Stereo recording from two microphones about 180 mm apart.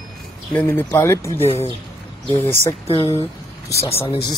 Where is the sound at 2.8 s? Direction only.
35° left (ahead or behind).